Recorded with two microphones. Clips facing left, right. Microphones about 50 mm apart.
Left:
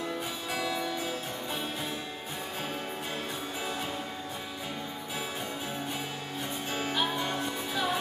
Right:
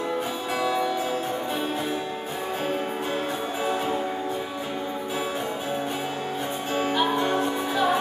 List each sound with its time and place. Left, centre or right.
0.6 s music: centre
6.7 s music: centre